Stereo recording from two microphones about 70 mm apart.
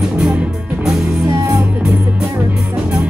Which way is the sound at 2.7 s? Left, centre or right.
Right.